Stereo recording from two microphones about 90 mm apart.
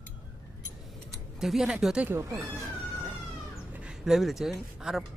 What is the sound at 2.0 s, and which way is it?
Speech, 35° right (ahead or behind).